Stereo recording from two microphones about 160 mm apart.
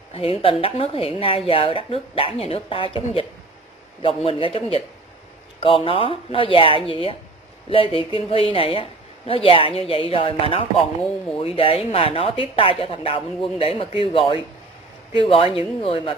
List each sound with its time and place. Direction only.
0.1 s speech: 35° left (ahead or behind)